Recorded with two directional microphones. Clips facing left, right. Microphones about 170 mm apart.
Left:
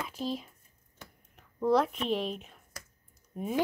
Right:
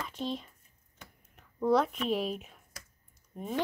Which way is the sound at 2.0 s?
5° right (ahead or behind).